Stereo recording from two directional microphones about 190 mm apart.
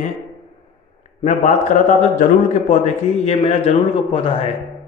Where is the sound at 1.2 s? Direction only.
40° left (ahead or behind).